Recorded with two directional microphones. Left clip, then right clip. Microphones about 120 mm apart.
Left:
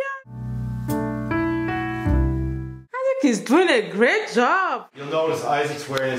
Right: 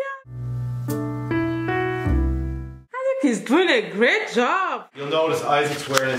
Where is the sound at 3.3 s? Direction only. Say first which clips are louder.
Left 1 dB; 10° left (ahead or behind).